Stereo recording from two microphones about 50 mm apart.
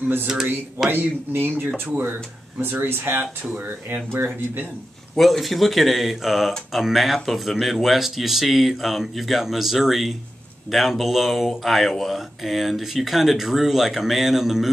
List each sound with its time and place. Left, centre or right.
0.3 s speech: centre
0.8 s speech: right
5.1 s speech: centre